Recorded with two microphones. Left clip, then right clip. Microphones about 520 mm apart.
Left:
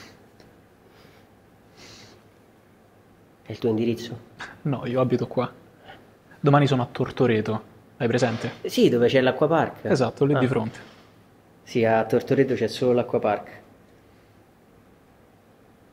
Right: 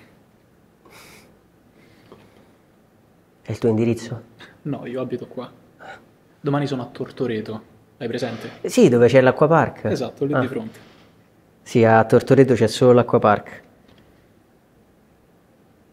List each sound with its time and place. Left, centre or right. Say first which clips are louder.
3.4 s speech: right 4 dB; right
4.4 s speech: left 2 dB; left
8.6 s speech: right 5 dB; right
9.8 s speech: left 2 dB; left
11.7 s speech: right 6 dB; right